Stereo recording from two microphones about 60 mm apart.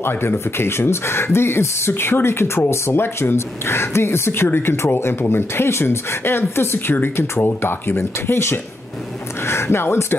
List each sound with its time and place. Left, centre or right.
0.0 s speech: left